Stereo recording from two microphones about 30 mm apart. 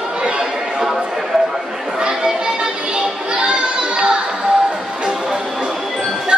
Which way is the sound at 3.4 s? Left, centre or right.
Right.